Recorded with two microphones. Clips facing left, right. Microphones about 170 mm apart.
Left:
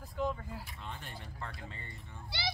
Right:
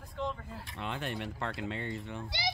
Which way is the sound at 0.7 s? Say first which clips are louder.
Right 9 dB; 80° right.